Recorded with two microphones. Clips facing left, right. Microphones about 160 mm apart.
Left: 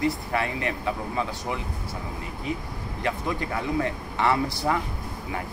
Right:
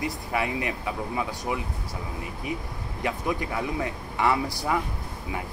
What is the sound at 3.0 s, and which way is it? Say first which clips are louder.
Speech: even; 15° right (ahead or behind).